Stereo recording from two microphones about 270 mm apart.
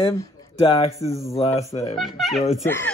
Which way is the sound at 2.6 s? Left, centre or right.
Centre.